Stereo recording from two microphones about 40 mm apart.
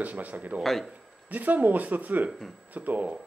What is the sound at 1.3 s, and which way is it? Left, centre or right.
Speech, right.